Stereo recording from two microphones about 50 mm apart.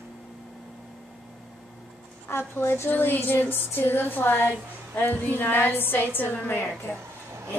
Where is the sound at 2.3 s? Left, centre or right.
Left.